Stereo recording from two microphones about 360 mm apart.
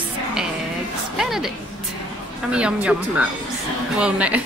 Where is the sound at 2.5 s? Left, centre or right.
Centre.